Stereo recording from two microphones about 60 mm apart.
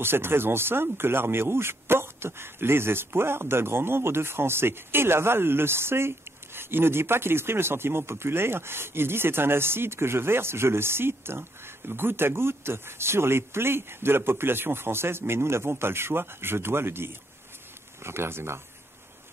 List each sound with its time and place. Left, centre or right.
0.0 s speech: right